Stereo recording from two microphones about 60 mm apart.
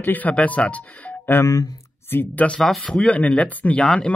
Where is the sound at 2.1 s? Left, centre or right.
Left.